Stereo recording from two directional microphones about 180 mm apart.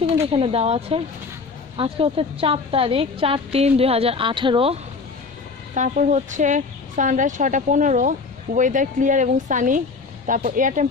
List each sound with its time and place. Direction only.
0.3 s a woman's voice: 35° right (ahead or behind)
5.8 s speech: 45° right (ahead or behind)